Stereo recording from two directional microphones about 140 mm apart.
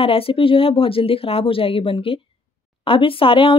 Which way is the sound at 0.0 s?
40° left (ahead or behind).